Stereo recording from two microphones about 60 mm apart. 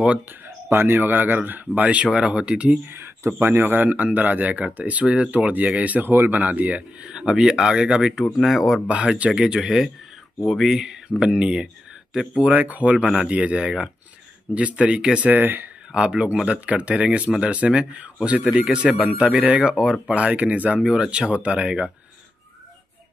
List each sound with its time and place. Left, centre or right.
0.7 s speech: right; by 2.8 s centre
2.9 s speech: right; by 8.8 s centre
8.8 s speech: centre
12.4 s speech: right
15.3 s speech: right
15.9 s speech: centre